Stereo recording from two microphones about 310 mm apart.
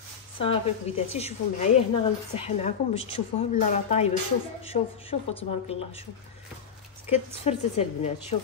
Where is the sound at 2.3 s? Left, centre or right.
Left.